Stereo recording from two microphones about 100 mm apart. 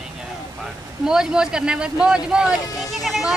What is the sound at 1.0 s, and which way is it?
Speech, 5° right (ahead or behind).